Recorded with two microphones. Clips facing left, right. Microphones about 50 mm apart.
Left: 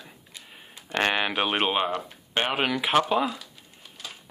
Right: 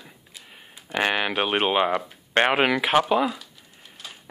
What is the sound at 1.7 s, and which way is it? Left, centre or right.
Speech, right.